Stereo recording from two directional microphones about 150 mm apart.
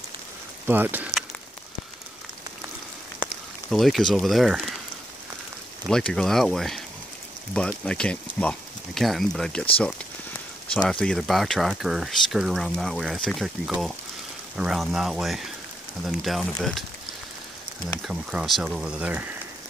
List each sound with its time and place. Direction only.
0.7 s speech: 15° right (ahead or behind)
3.2 s a sound: 30° right (ahead or behind)
3.7 s speech: centre (ahead or behind)
5.9 s speech: 5° left (ahead or behind)
10.9 s speech: 5° left (ahead or behind)
18.0 s speech: 5° right (ahead or behind)